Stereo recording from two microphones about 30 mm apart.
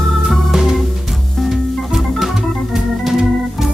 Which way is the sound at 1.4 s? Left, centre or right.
Centre.